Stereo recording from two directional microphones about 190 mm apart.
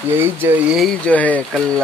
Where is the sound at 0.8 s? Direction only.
5° left (ahead or behind).